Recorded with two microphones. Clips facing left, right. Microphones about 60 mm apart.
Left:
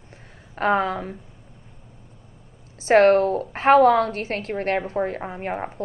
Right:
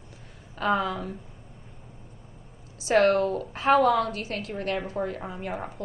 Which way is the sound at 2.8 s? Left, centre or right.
Left.